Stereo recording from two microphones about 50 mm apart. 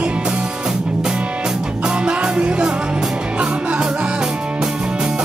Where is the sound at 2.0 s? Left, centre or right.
Centre.